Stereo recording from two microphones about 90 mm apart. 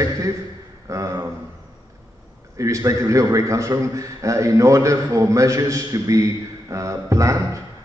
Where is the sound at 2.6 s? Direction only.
35° right (ahead or behind).